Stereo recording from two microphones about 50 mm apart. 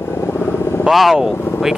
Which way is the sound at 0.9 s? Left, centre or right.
Centre.